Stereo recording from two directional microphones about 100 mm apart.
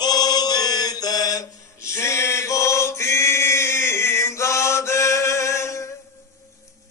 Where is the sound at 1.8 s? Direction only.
30° left (ahead or behind).